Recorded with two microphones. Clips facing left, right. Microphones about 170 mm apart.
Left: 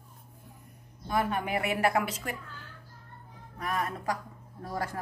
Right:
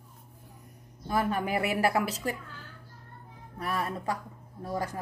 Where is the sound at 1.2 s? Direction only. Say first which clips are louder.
Right 2 dB; 35° right (ahead or behind).